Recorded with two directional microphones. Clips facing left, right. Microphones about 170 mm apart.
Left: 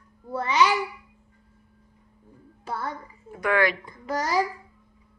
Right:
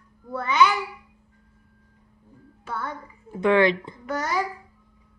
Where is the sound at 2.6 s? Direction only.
35° left (ahead or behind).